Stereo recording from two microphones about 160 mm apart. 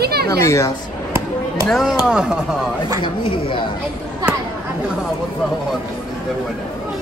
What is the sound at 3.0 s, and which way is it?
Speech, 30° left (ahead or behind).